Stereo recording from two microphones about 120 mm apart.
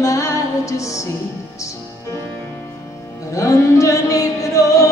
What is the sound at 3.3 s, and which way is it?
Music, 25° left (ahead or behind).